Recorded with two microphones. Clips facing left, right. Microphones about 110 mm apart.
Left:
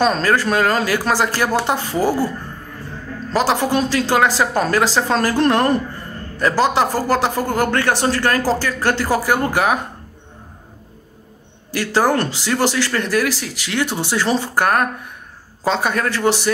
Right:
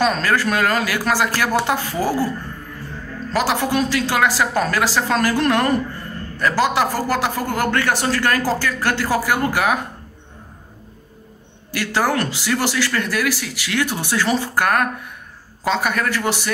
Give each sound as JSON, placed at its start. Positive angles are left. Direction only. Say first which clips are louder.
{"t": 0.0, "sound": "speech", "louder": "left 2 dB", "side_deg": 30}
{"t": 3.3, "sound": "speech", "louder": "left 2 dB", "side_deg": 30}
{"t": 11.7, "sound": "speech", "louder": "left 3 dB", "side_deg": 30}